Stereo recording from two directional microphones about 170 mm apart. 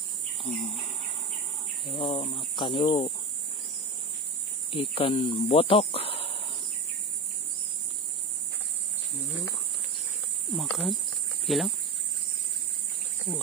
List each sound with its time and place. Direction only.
0.4 s speech: 35° left (ahead or behind)
1.9 s speech: 30° left (ahead or behind)
4.7 s speech: 35° left (ahead or behind)
10.5 s speech: centre (ahead or behind)